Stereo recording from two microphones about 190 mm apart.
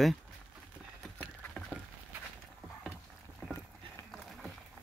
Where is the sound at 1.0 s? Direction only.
Centre (ahead or behind).